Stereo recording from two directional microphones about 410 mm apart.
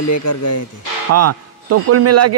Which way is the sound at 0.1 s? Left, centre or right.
Left.